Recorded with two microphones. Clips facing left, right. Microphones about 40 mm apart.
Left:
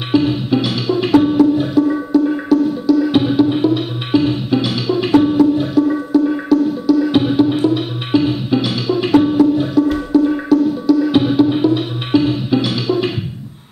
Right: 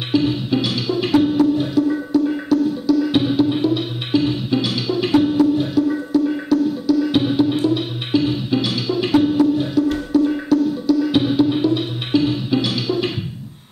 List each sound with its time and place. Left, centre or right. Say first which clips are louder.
0.1 s music: left 4 dB; centre